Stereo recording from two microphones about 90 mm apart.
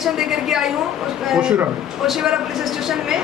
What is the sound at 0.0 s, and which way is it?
A woman's voice, 5° right (ahead or behind).